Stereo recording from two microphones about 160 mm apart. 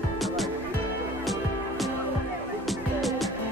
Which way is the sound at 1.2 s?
Centre (ahead or behind).